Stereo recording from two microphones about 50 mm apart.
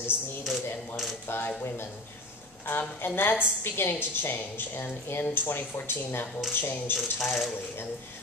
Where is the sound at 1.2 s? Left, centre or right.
Left.